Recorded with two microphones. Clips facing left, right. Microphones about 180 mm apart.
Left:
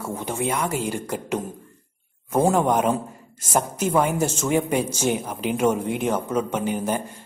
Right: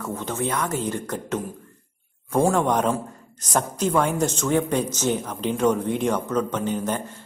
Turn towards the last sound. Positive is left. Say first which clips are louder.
# left 1 dB
turn(degrees=10)  # may be behind; listen again after turning